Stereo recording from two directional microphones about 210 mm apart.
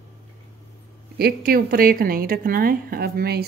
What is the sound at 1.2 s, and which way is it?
A woman's voice, 45° right (ahead or behind).